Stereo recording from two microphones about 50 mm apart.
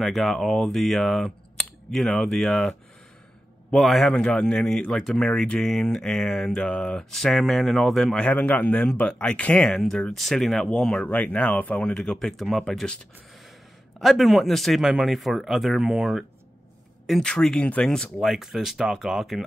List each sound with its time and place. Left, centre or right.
0.0 s speech: centre
3.7 s a sound: centre
4.2 s a sound: centre
8.1 s speech: left
9.8 s speech: centre
11.1 s speech: left
11.8 s speech: left
12.2 s speech: centre
13.9 s speech: centre
14.8 s speech: centre
17.2 s a sound: centre
18.2 s speech: centre